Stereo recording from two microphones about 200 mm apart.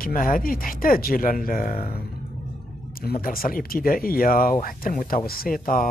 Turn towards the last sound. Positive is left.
turn(degrees=45)  # may be behind; listen again after turning